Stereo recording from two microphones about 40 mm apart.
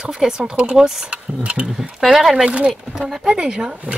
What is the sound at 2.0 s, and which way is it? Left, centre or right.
Speech, centre.